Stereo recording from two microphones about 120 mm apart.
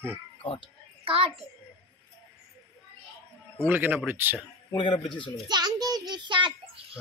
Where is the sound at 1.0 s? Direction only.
50° right (ahead or behind).